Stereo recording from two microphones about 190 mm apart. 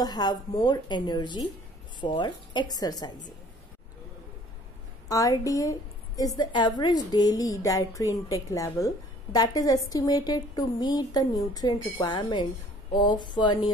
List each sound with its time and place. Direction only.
0.0 s a woman's voice: 20° left (ahead or behind)
5.0 s a woman's voice: 20° left (ahead or behind)